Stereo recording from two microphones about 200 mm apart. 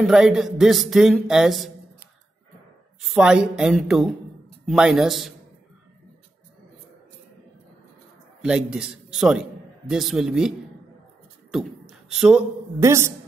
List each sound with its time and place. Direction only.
0.0 s speech: centre (ahead or behind)
3.0 s speech: centre (ahead or behind)
8.4 s a man's voice: 5° right (ahead or behind)
11.5 s beatboxing: centre (ahead or behind)
11.9 s a man's voice: 5° right (ahead or behind)